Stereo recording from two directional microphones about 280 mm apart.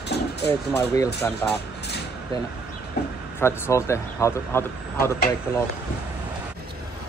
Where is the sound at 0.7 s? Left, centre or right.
Centre.